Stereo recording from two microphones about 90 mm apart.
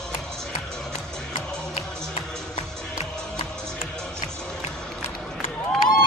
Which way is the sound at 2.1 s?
75° left (ahead or behind).